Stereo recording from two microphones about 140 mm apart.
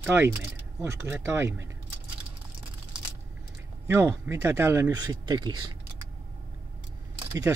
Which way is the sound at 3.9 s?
20° right (ahead or behind).